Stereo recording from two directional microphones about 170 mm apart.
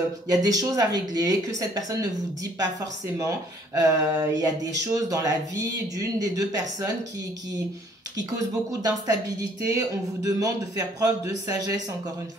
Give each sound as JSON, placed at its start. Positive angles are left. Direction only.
{"t": 0.3, "sound": "speech", "side_deg": -20}
{"t": 3.2, "sound": "speech", "side_deg": -20}
{"t": 8.2, "sound": "speech", "side_deg": -20}